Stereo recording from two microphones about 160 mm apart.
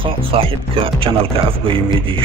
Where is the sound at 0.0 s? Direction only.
35° right (ahead or behind).